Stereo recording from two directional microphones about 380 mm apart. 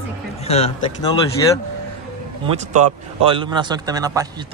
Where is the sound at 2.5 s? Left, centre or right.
Centre.